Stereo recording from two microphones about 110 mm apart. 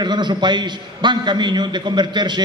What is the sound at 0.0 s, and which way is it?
A man's voice, 45° right (ahead or behind).